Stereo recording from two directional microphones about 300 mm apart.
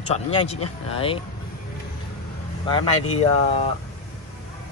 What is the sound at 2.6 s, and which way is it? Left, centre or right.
Speech, centre.